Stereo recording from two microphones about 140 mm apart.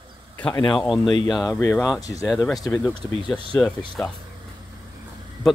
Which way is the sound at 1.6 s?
15° left (ahead or behind).